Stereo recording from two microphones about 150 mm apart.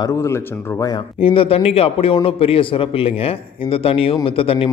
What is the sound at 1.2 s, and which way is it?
A man's voice, 35° left (ahead or behind).